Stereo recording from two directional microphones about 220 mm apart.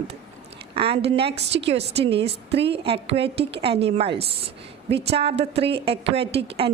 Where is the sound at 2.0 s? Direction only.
50° right (ahead or behind).